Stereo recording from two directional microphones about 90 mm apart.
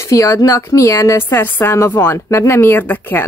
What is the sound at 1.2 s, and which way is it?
A woman's voice, 20° left (ahead or behind).